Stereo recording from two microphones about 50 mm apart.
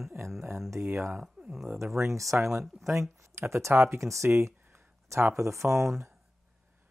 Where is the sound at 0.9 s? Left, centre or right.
Right.